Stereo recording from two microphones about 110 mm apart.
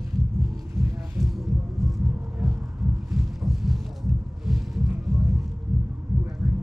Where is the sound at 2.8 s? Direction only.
Centre (ahead or behind).